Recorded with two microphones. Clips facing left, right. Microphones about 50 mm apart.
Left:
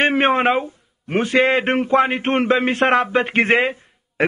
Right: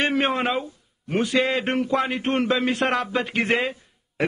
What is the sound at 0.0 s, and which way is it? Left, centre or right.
A man's voice, left.